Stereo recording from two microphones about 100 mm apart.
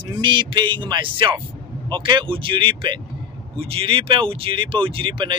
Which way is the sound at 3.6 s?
70° right (ahead or behind).